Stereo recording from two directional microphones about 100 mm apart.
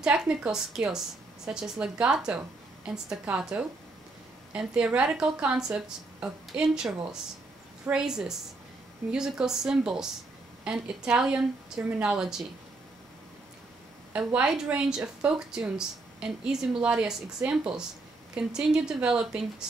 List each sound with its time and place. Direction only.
0.0 s a woman's voice: 10° right (ahead or behind)
14.1 s a woman's voice: 10° right (ahead or behind)